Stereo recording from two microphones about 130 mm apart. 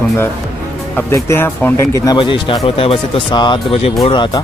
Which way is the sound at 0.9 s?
20° left (ahead or behind).